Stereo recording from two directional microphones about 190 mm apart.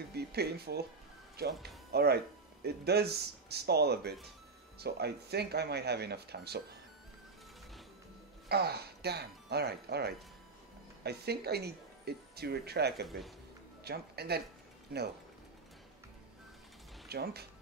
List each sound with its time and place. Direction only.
0.1 s speech: 60° right (ahead or behind)
8.5 s speech: 60° right (ahead or behind)
13.0 s speech: centre (ahead or behind)
13.8 s speech: 60° right (ahead or behind)
17.1 s speech: 55° right (ahead or behind)